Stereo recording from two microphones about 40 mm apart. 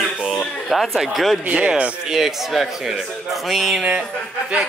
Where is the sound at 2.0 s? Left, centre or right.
Centre.